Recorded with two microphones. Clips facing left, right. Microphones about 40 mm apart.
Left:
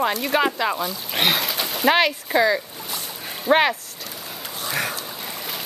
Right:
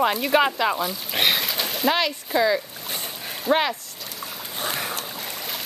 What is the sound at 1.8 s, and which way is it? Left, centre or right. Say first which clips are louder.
Speech: left 5 dB; left.